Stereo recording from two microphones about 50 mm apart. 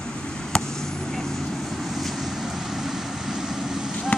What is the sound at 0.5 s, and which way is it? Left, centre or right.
Vehicle, centre.